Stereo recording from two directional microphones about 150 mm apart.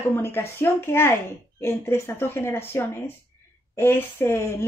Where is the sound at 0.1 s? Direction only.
15° left (ahead or behind).